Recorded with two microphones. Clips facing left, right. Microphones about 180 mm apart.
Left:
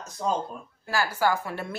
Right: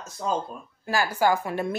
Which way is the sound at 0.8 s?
15° right (ahead or behind).